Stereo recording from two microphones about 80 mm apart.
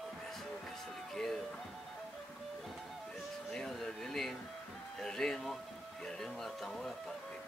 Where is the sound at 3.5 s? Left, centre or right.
Centre.